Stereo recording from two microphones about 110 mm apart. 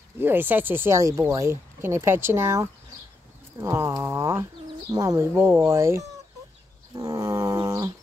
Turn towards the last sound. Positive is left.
turn(degrees=-30)  # may be behind; listen again after turning